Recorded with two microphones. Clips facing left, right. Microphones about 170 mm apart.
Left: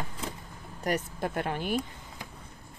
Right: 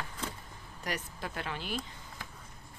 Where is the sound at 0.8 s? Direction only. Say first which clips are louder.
Left 8 dB; 50° left (ahead or behind).